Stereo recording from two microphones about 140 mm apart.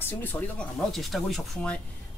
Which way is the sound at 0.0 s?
15° left (ahead or behind).